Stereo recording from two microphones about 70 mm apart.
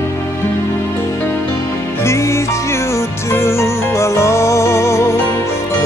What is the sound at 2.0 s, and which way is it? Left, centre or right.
Music, left.